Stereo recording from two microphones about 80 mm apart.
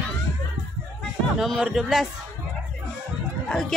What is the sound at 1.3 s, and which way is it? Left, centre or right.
Speech, centre.